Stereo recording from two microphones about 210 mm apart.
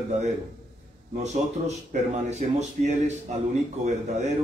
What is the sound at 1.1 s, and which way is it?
Speech, 30° right (ahead or behind).